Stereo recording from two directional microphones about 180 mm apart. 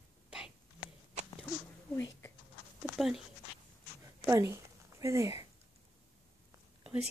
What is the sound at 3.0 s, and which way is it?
Speech, centre (ahead or behind).